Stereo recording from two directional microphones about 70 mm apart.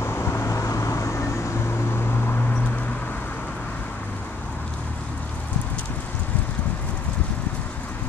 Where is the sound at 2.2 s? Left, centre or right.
Left.